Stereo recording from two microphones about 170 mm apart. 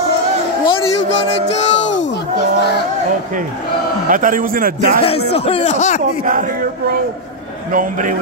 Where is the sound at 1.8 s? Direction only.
90° left.